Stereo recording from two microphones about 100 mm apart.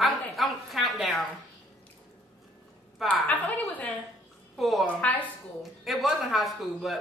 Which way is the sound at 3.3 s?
15° left (ahead or behind).